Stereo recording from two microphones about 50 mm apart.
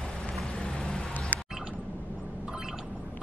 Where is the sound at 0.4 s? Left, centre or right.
Centre.